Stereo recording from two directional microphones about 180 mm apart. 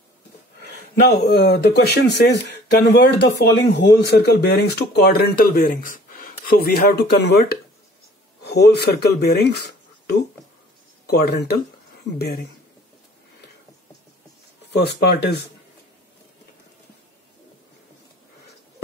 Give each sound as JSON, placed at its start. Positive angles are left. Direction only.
{"t": 0.6, "sound": "speech", "side_deg": 65}
{"t": 14.7, "sound": "speech", "side_deg": 65}